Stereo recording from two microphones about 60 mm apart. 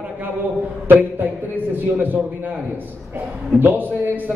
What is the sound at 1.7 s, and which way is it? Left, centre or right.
A man's voice, right.